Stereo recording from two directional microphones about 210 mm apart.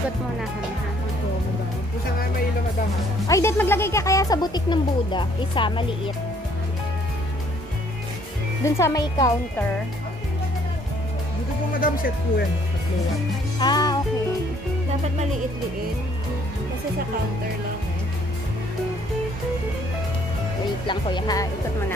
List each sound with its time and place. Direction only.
3.3 s speech: 15° left (ahead or behind)
8.6 s speech: 15° left (ahead or behind)
11.8 s speech: 40° left (ahead or behind)
13.6 s speech: 20° left (ahead or behind)
20.8 s speech: 20° left (ahead or behind)